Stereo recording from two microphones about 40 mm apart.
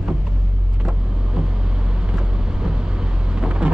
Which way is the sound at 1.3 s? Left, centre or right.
Right.